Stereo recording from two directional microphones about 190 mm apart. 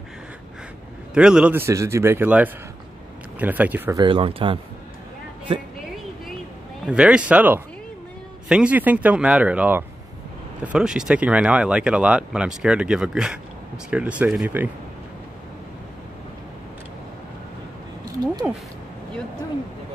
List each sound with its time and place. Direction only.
1.1 s a man's voice: 5° right (ahead or behind)
4.0 s speech: 30° right (ahead or behind)
6.9 s a man's voice: 5° right (ahead or behind)